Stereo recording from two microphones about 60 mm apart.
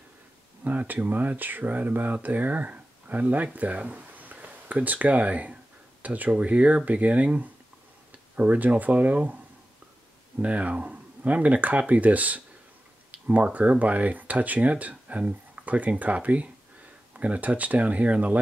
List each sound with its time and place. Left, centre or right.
0.7 s speech: right
10.4 s speech: right